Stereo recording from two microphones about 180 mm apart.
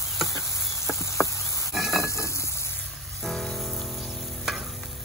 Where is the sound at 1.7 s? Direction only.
Centre (ahead or behind).